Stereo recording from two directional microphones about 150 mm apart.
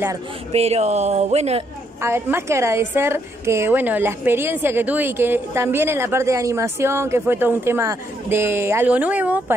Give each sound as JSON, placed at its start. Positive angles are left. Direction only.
{"t": 0.5, "sound": "speech", "side_deg": -45}
{"t": 2.0, "sound": "a woman's voice", "side_deg": -15}